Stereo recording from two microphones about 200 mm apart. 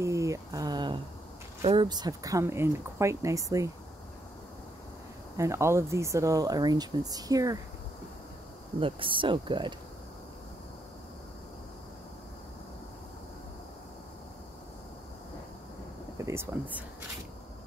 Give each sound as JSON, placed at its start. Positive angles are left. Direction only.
{"t": 0.0, "sound": "a sound", "side_deg": -15}
{"t": 1.6, "sound": "speech", "side_deg": -30}
{"t": 5.4, "sound": "speech", "side_deg": -15}
{"t": 8.7, "sound": "speech", "side_deg": -25}
{"t": 16.2, "sound": "speech", "side_deg": -15}